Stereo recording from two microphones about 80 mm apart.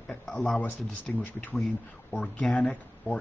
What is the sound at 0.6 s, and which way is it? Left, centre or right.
Speech, centre.